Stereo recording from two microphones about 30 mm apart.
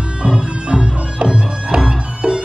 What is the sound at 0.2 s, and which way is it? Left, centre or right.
Music, right.